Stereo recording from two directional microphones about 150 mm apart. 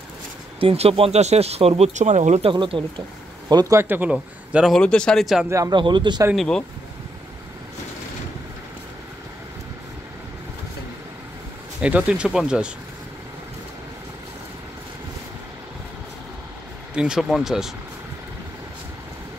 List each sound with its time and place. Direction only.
0.6 s speech: 40° right (ahead or behind)
2.5 s speech: 30° right (ahead or behind); by 4.7 s 5° right (ahead or behind)
4.7 s speech: 5° left (ahead or behind)
5.5 s speech: 25° right (ahead or behind)
6.3 s speech: 5° left (ahead or behind)
11.8 s speech: 10° right (ahead or behind)
16.9 s speech: 5° right (ahead or behind)